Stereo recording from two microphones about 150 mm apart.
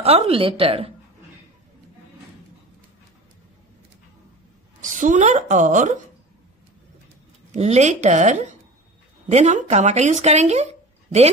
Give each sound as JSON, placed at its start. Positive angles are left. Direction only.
{"t": 0.0, "sound": "a woman's voice", "side_deg": -40}
{"t": 4.8, "sound": "a woman's voice", "side_deg": -55}
{"t": 7.5, "sound": "speech", "side_deg": -45}